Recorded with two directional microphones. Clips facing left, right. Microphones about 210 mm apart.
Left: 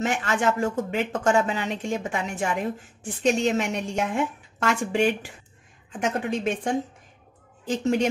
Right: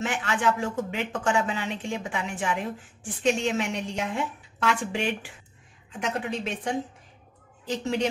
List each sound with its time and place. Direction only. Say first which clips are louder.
0.0 s speech: left 2 dB; 45° left (ahead or behind)